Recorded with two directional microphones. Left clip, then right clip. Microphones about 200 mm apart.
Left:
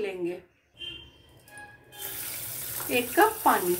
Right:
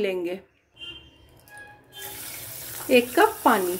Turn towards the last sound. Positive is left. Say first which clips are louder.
# right 2 dB
turn(degrees=-55)  # may be behind; listen again after turning